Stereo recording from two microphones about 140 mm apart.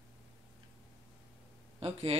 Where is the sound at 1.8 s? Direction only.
45° right (ahead or behind).